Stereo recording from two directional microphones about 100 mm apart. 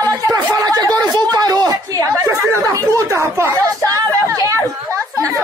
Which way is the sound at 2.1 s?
30° right (ahead or behind).